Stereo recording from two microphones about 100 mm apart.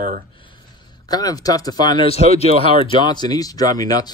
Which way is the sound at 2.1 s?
90° left.